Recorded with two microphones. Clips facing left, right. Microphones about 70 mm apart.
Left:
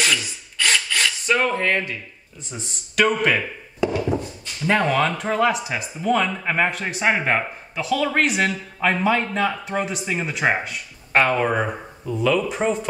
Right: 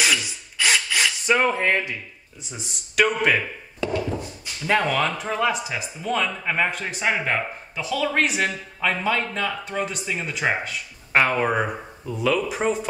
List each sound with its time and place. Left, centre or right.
0.2 s rub: centre
2.5 s a man's voice: centre
3.8 s a man's voice: centre
7.1 s speech: centre
7.7 s a man's voice: centre
8.9 s speech: centre
10.4 s speech: left
11.1 s a man's voice: centre